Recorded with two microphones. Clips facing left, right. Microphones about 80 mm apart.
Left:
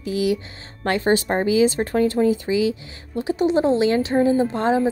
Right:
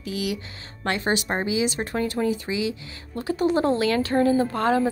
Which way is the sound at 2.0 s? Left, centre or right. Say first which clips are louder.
Left 6 dB; left.